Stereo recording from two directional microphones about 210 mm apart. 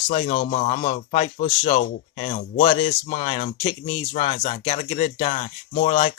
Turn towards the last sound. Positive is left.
turn(degrees=30)  # may be behind; listen again after turning